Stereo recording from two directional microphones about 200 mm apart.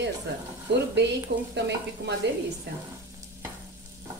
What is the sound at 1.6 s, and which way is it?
Speech, 60° right (ahead or behind).